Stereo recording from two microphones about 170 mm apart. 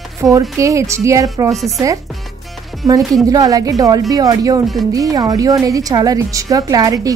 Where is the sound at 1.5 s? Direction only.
Centre (ahead or behind).